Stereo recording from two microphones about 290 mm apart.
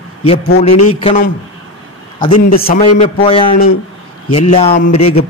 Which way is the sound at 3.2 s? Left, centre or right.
Centre.